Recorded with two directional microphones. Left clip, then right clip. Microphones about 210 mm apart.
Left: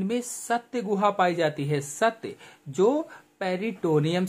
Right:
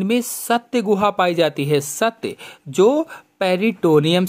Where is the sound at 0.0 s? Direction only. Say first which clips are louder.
Right 9 dB; 35° right (ahead or behind).